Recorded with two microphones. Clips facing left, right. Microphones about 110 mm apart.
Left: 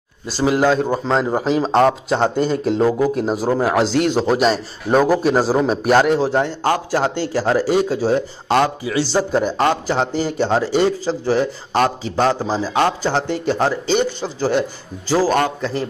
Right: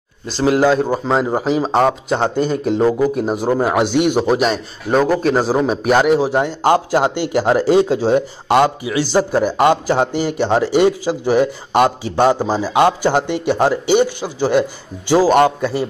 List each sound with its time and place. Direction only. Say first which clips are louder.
0.3 s a man's voice: right 2 dB; centre (ahead or behind); by 15.7 s 20° right (ahead or behind)